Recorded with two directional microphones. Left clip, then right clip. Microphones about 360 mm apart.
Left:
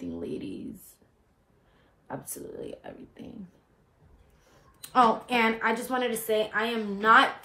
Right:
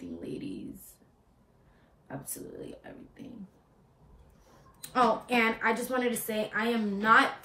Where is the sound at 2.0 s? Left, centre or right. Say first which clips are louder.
Left 4 dB; centre.